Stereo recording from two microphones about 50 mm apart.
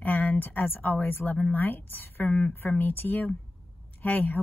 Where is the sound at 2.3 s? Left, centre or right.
Left.